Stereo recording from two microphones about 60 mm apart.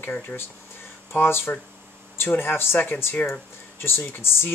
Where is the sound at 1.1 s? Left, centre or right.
Left.